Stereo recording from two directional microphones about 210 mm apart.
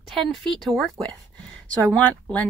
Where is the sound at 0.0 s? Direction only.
Centre (ahead or behind).